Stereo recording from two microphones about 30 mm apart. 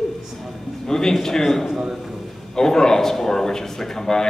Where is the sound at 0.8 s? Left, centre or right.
Centre.